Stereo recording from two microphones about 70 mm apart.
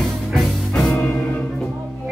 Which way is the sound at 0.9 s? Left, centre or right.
Centre.